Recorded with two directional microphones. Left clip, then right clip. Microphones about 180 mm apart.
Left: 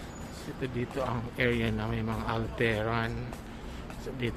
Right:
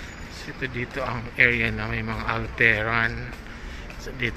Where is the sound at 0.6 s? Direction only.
10° left (ahead or behind).